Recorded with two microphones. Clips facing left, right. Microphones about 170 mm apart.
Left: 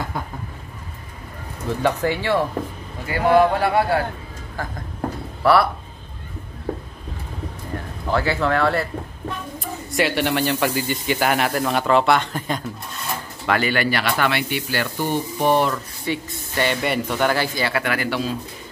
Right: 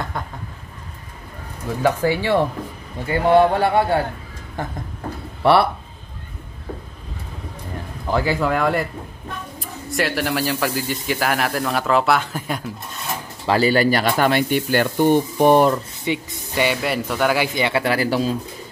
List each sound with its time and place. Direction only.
0.2 s a sound: 5° left (ahead or behind)
1.8 s speech: 10° right (ahead or behind)
3.1 s speech: 25° right (ahead or behind)
8.1 s speech: 15° right (ahead or behind)
9.6 s speech: centre (ahead or behind)
13.5 s speech: 35° right (ahead or behind)
15.7 s speech: 20° right (ahead or behind)
17.6 s speech: 20° right (ahead or behind)
17.8 s speech: 35° right (ahead or behind)